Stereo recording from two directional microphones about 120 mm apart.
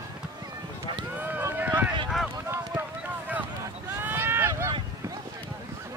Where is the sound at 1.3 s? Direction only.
15° right (ahead or behind).